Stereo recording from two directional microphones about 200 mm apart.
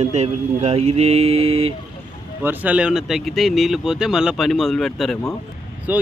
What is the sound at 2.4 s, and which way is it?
Speech, 10° right (ahead or behind).